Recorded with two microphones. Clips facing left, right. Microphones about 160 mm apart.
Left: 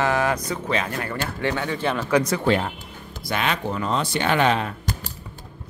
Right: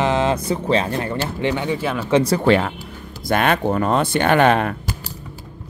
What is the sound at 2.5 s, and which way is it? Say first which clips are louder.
Speech: right 5 dB; 90° right.